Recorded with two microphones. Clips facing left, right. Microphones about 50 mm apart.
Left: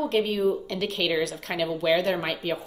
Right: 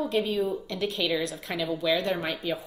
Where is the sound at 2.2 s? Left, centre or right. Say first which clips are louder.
Left 2 dB; left.